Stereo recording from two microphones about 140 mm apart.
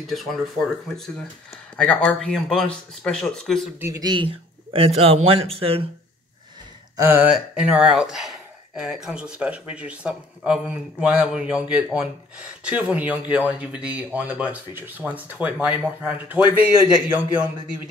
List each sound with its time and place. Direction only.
0.0 s speech: centre (ahead or behind)
1.8 s speech: 5° left (ahead or behind)
3.8 s a man's voice: 25° right (ahead or behind); by 5.9 s 45° right (ahead or behind)
7.0 s speech: 15° right (ahead or behind)
7.3 s speech: 5° right (ahead or behind)